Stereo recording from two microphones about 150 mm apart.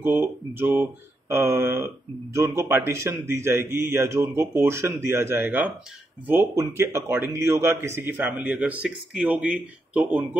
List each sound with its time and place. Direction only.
0.0 s speech: 15° right (ahead or behind)